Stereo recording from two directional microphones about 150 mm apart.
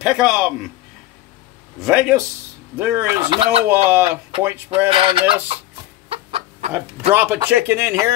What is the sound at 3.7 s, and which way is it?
Speech, 15° right (ahead or behind).